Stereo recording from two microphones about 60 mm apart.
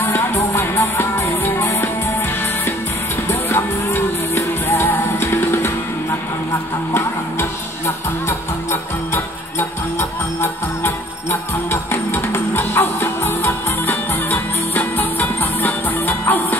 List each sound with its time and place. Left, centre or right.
0.0 s music: left
3.3 s music: left
6.9 s music: left